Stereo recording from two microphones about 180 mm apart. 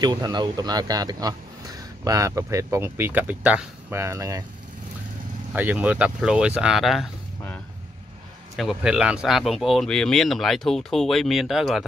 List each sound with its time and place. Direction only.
0.0 s a man's voice: 25° right (ahead or behind)
5.5 s speech: 10° right (ahead or behind)
8.5 s speech: 5° right (ahead or behind)